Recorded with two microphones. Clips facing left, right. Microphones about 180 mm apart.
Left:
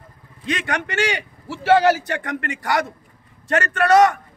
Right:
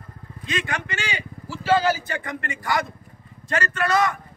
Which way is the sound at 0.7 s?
70° left (ahead or behind).